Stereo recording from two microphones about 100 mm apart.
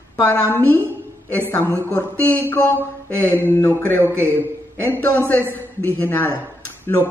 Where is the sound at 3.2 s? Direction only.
20° left (ahead or behind).